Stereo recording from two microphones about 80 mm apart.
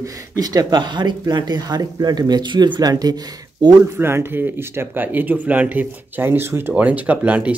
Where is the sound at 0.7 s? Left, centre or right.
Right.